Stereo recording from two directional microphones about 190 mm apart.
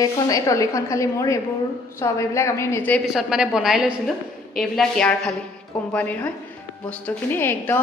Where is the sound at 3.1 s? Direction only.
Centre (ahead or behind).